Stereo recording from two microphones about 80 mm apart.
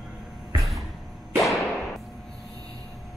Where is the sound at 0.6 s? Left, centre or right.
Centre.